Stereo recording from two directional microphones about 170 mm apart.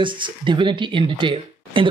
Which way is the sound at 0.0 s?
30° right (ahead or behind).